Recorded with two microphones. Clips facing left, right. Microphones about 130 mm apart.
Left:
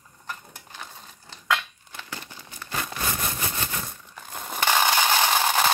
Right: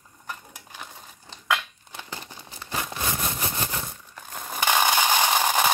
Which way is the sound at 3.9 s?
Centre (ahead or behind).